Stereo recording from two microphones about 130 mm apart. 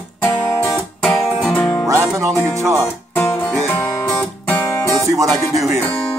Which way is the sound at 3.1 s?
15° left (ahead or behind).